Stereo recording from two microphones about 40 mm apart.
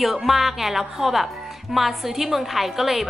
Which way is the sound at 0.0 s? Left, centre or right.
Centre.